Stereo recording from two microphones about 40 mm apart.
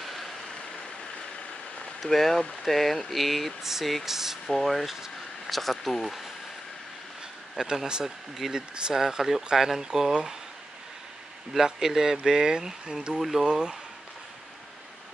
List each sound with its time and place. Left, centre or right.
0.0 s vehicle: centre
2.0 s speech: centre
3.6 s speech: centre
4.5 s speech: centre
7.7 s speech: centre
8.9 s speech: centre
11.5 s speech: centre
13.5 s speech: centre